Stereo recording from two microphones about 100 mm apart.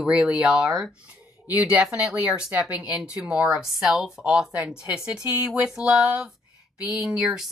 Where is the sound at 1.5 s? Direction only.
15° right (ahead or behind).